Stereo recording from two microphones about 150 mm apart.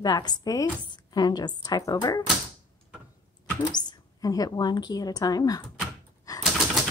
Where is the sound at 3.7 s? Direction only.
25° left (ahead or behind).